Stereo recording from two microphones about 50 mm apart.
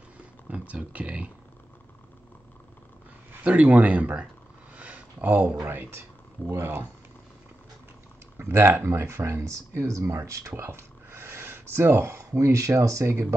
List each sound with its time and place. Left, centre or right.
0.5 s speech: right
3.4 s speech: right
8.4 s speech: right
10.5 s speech: right